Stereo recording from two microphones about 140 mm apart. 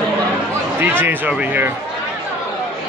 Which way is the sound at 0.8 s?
15° right (ahead or behind).